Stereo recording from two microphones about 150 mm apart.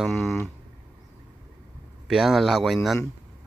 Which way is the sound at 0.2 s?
15° left (ahead or behind).